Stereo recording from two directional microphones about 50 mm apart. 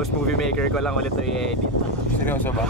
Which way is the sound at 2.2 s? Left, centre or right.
Left.